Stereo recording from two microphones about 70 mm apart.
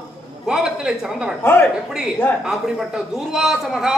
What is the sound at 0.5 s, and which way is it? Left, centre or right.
Speech, centre.